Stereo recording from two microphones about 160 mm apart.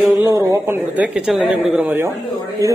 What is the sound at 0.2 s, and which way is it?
Speech, 20° right (ahead or behind).